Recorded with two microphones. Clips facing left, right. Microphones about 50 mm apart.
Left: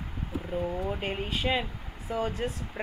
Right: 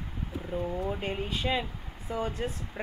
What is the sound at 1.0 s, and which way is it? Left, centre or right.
Speech, centre.